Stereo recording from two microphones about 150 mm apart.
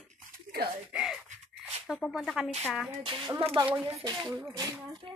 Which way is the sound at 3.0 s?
35° right (ahead or behind).